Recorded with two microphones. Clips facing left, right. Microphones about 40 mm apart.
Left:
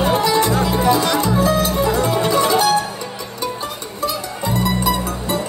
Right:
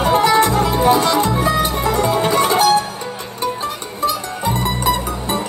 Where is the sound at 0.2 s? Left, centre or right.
Right.